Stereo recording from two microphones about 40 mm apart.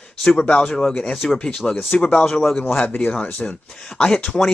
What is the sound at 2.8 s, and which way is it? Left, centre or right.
Speech, left.